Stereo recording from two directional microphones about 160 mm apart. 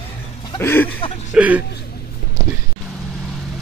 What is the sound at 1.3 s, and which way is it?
Speech, 10° right (ahead or behind).